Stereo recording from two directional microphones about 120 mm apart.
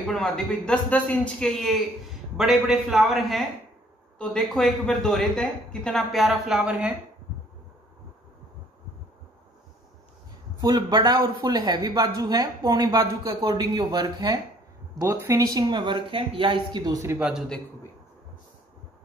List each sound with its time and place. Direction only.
0.0 s a woman's voice: 5° left (ahead or behind)
10.6 s speech: 40° right (ahead or behind)
15.0 s speech: 25° right (ahead or behind)
17.2 s a woman's voice: 5° right (ahead or behind)